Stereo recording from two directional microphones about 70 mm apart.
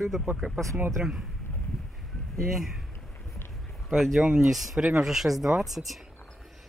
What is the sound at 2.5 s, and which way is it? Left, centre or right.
Speech, centre.